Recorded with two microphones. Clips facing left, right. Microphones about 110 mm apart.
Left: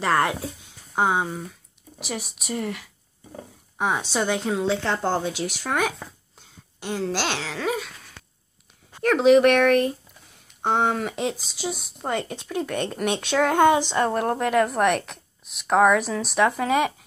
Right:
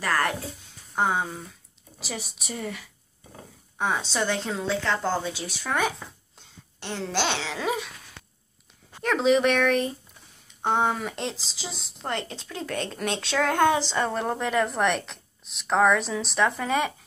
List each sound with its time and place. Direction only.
0.0 s speech: 20° left (ahead or behind); by 7.9 s 5° right (ahead or behind)
9.0 s speech: 5° left (ahead or behind)